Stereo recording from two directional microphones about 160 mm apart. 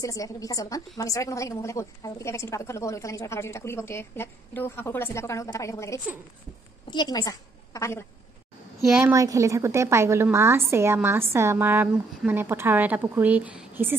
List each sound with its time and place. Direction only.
0.0 s a woman's voice: 20° left (ahead or behind)
9.0 s a woman's voice: 20° right (ahead or behind)